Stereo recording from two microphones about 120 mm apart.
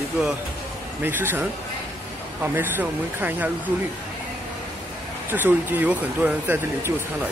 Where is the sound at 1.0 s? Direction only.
15° right (ahead or behind).